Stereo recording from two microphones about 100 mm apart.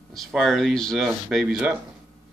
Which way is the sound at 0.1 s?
Centre (ahead or behind).